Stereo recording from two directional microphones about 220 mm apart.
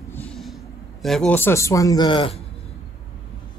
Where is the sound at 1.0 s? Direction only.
5° left (ahead or behind); by 2.3 s 20° left (ahead or behind).